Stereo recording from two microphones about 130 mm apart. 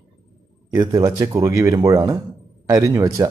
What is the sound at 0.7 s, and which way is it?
Speech, 30° right (ahead or behind).